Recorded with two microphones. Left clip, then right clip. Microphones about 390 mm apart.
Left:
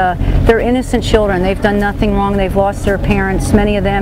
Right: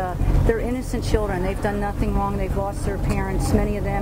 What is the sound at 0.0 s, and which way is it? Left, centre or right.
Speech, left.